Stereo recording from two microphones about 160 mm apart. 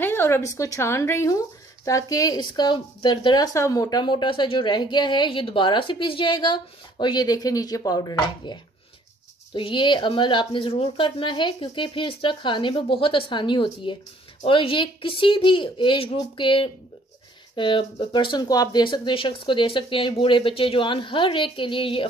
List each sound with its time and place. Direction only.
0.0 s a woman's voice: 15° left (ahead or behind); by 3.4 s 30° left (ahead or behind)
3.5 s a woman's voice: 20° left (ahead or behind)